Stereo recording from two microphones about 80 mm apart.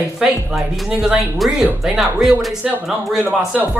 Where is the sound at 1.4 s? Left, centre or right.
Centre.